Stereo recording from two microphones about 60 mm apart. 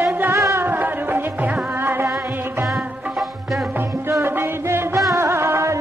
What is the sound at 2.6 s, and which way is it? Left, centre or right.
Music, centre.